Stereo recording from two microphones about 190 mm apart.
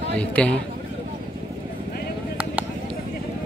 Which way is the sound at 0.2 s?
5° left (ahead or behind).